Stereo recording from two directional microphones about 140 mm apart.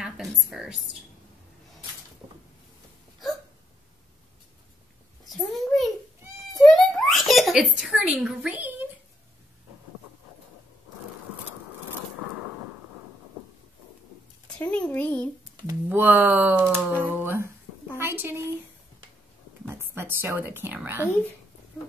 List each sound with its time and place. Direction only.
0.0 s a woman's voice: 5° right (ahead or behind)
5.4 s a sound: centre (ahead or behind)
14.6 s a child's voice: 10° left (ahead or behind)
15.9 s speech: 15° right (ahead or behind)
17.9 s a sound: 15° right (ahead or behind)
19.6 s speech: 15° right (ahead or behind)